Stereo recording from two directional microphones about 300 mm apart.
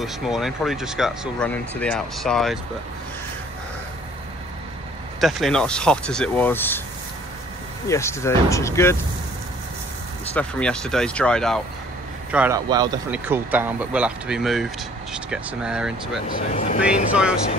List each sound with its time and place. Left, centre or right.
0.0 s speech: centre
5.2 s speech: centre
7.9 s speech: centre
10.3 s speech: centre
16.3 s speech: left
16.8 s speech: centre